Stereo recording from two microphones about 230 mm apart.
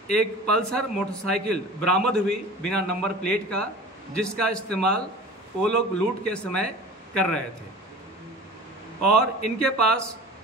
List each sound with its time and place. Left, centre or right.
0.1 s a man's voice: centre
9.0 s a man's voice: left
9.6 s a man's voice: centre